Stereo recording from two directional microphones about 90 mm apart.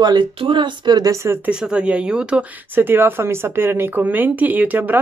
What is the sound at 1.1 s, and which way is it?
Speech, 30° right (ahead or behind).